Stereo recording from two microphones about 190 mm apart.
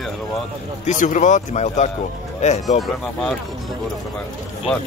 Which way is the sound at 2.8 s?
Centre (ahead or behind).